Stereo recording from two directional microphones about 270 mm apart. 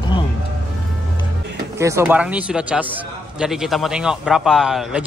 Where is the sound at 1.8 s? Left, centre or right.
Centre.